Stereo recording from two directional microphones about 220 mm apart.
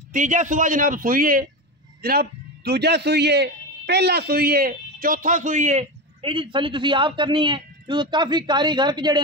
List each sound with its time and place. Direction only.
0.1 s a man's voice: 35° right (ahead or behind)